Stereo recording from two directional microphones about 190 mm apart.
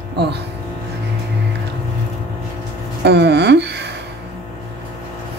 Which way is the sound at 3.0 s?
60° right (ahead or behind).